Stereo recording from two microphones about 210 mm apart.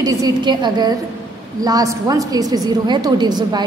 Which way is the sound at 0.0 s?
15° right (ahead or behind).